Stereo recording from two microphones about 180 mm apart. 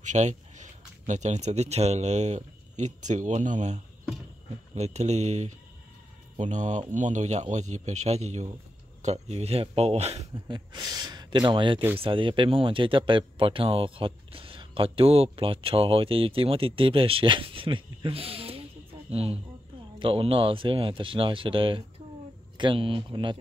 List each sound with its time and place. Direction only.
0.0 s a man's voice: 40° right (ahead or behind)
10.5 s a man's voice: 20° right (ahead or behind)